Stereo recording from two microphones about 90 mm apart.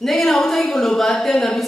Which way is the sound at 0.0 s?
5° left (ahead or behind).